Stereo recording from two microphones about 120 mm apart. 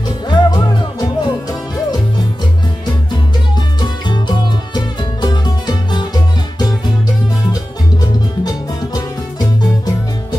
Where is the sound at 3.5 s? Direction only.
35° left (ahead or behind).